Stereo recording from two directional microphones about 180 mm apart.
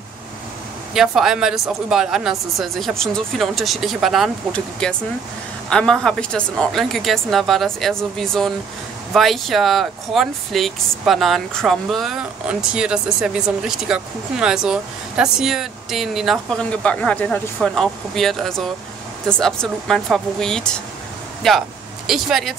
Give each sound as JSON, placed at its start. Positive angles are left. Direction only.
{"t": 0.9, "sound": "speech", "side_deg": 0}